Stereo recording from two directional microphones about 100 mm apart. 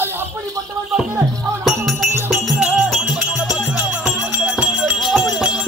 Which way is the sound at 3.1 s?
10° right (ahead or behind).